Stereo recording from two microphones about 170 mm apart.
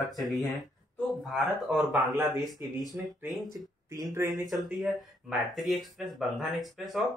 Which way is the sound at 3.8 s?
20° right (ahead or behind).